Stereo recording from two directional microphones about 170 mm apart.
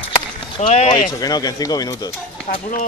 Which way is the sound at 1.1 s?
20° left (ahead or behind).